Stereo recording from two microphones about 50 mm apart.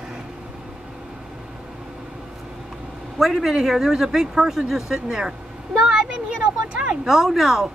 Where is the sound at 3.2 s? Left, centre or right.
Centre.